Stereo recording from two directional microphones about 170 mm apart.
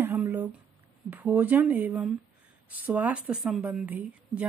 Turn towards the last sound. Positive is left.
turn(degrees=-10)  # may be behind; listen again after turning